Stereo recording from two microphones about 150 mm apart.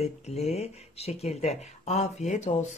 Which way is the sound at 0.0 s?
45° left (ahead or behind).